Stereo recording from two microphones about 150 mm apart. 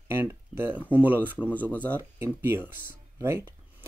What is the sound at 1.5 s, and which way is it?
Speech, 10° left (ahead or behind).